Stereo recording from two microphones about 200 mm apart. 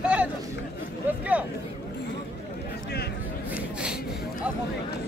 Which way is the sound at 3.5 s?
5° right (ahead or behind).